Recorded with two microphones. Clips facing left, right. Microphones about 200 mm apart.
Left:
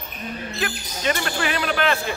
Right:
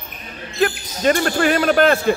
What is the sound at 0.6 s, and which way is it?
Speech, 45° right (ahead or behind).